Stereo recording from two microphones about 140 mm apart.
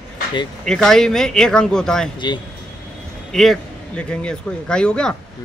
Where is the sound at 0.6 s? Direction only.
5° left (ahead or behind).